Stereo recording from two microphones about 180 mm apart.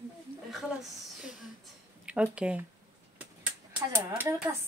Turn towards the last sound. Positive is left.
turn(degrees=-10)  # may be behind; listen again after turning